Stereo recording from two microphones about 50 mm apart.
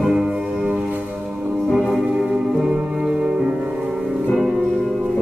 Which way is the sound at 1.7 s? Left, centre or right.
Centre.